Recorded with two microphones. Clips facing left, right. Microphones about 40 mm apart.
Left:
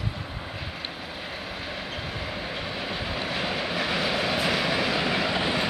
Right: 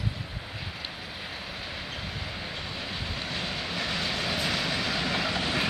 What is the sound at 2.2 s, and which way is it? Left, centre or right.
Vehicle, centre.